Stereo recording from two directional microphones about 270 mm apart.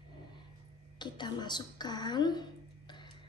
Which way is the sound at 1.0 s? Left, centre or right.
Centre.